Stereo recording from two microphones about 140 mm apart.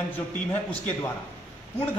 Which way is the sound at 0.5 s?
20° left (ahead or behind).